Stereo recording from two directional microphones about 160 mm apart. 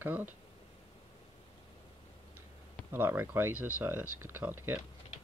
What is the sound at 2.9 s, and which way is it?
Speech, 15° right (ahead or behind).